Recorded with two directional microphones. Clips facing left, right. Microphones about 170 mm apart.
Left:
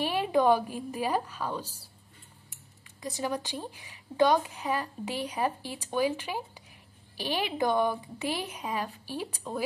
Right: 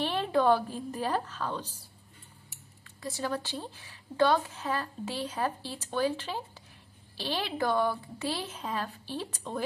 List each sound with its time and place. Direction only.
0.0 s speech: 10° left (ahead or behind)